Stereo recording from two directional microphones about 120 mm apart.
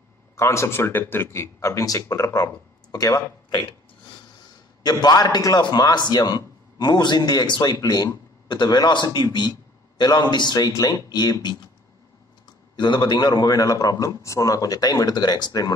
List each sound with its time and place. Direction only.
0.4 s a man's voice: 25° left (ahead or behind)
4.8 s a man's voice: 35° left (ahead or behind)
12.7 s a man's voice: 40° left (ahead or behind)